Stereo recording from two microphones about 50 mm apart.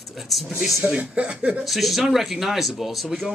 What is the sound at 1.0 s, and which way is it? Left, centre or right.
Speech, right.